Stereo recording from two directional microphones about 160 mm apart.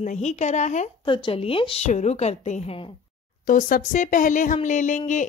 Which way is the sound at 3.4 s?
60° left (ahead or behind).